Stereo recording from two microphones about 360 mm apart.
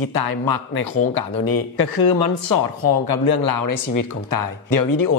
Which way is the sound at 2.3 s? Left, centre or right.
Left.